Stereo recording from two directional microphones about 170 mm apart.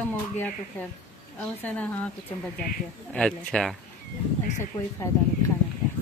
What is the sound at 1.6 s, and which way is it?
Speech, 10° left (ahead or behind).